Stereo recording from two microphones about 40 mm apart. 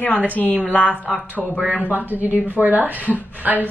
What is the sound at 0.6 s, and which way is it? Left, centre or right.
Speech, left.